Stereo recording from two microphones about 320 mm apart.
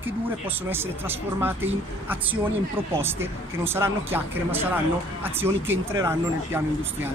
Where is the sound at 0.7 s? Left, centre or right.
Centre.